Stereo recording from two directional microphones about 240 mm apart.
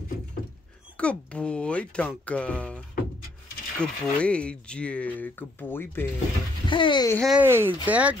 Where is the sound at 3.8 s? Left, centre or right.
Centre.